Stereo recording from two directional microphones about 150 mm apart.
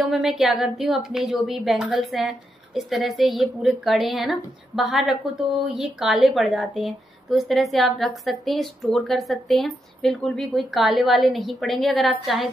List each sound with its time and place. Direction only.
0.0 s a woman's voice: centre (ahead or behind)